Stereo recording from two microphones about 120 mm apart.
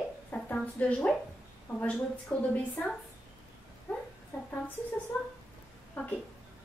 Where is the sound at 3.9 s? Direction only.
20° left (ahead or behind).